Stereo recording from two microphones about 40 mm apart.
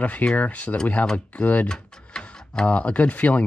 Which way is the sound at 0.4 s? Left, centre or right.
Left.